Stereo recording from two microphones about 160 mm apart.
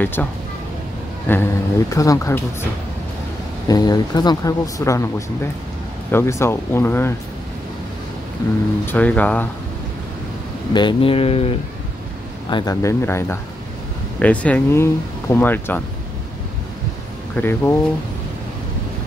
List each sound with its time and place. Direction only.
0.0 s speech: 10° left (ahead or behind)
3.6 s speech: 25° left (ahead or behind)
8.8 s speech: 10° left (ahead or behind)
10.7 s speech: 30° left (ahead or behind)
12.4 s speech: 25° left (ahead or behind)
17.4 s speech: 15° left (ahead or behind)